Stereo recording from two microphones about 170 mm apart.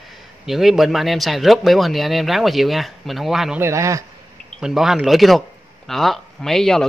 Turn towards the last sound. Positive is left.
turn(degrees=0)  # may be behind; listen again after turning